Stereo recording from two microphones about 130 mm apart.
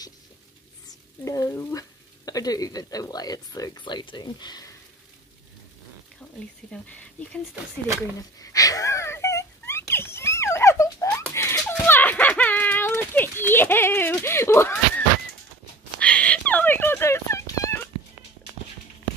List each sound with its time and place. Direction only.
0.8 s speech: 25° left (ahead or behind)
6.7 s speech: 10° left (ahead or behind)
8.4 s wail: 25° left (ahead or behind)
11.3 s a sound: 20° left (ahead or behind)